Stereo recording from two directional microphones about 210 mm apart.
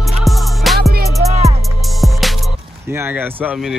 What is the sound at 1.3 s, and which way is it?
Music, 30° right (ahead or behind).